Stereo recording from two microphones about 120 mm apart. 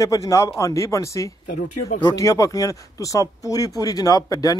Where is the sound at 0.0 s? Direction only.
25° left (ahead or behind).